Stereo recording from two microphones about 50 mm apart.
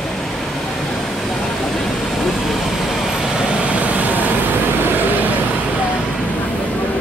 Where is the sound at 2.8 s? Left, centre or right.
Centre; by 5.3 s right.